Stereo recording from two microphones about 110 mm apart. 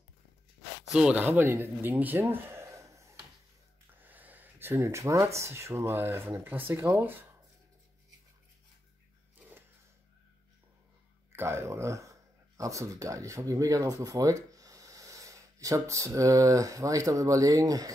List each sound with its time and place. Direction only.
0.9 s speech: 10° right (ahead or behind); by 3.2 s 25° right (ahead or behind)
4.0 s speech: 15° right (ahead or behind)
11.3 s speech: 25° right (ahead or behind)